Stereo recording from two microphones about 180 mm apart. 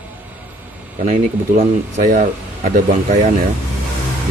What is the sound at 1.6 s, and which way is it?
Speech, 45° right (ahead or behind).